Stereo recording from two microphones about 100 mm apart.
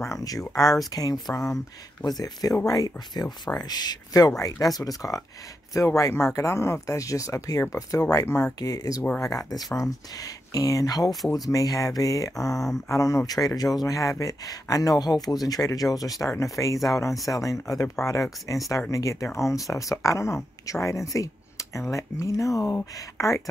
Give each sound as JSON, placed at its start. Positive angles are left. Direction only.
{"t": 0.1, "sound": "speech", "side_deg": 40}